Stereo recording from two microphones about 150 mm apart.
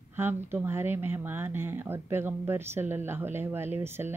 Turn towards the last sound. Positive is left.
turn(degrees=-15)  # may be behind; listen again after turning